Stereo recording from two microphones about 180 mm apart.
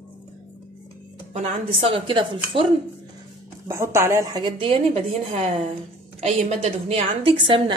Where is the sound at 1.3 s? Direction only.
35° right (ahead or behind).